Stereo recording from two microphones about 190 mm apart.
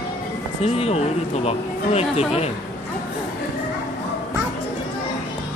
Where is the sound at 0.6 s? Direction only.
35° left (ahead or behind).